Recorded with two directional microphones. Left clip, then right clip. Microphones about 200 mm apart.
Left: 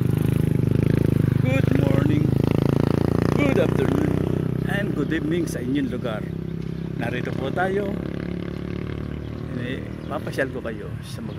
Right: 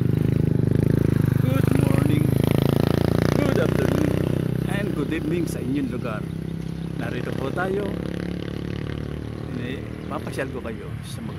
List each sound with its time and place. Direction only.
0.1 s vehicle: 55° left (ahead or behind)
1.6 s a sound: 15° right (ahead or behind)
2.0 s vehicle: 35° right (ahead or behind); by 4.3 s 55° right (ahead or behind)
4.6 s vehicle: 15° left (ahead or behind)